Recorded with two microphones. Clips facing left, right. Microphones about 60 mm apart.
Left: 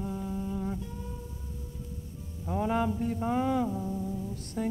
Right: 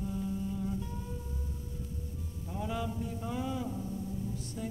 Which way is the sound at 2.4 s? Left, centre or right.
Left.